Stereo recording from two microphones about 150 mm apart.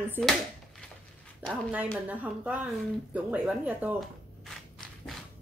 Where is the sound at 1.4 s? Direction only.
10° right (ahead or behind).